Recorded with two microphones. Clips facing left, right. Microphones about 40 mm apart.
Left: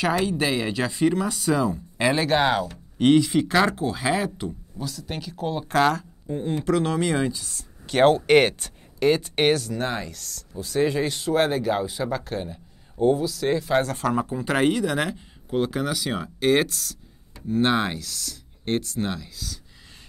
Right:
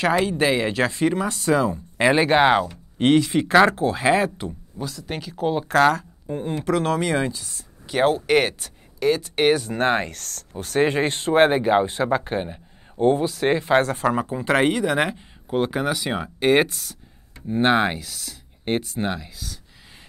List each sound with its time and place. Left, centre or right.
0.2 s speech: centre
1.6 s speech: right
2.7 s a sound: right
3.2 s speech: centre
7.9 s speech: centre
9.7 s speech: right
14.3 s speech: centre